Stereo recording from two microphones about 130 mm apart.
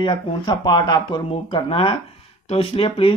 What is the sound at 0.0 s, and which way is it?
Speech, 35° left (ahead or behind).